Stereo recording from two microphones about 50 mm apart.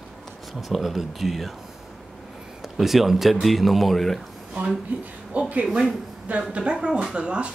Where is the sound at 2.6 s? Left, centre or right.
Centre.